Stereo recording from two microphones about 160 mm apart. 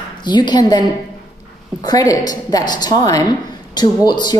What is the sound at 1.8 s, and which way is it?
Speech, 25° left (ahead or behind).